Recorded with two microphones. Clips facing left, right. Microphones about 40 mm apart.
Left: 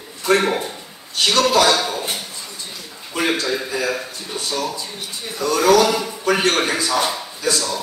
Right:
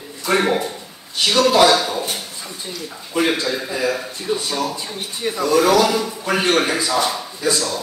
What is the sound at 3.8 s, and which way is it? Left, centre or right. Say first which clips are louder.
Speech: right 2 dB; centre.